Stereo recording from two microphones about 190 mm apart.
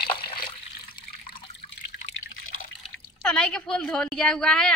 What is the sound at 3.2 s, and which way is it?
A woman's voice, 5° left (ahead or behind).